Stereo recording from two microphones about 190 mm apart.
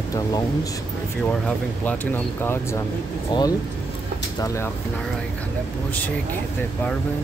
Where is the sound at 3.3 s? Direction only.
25° left (ahead or behind).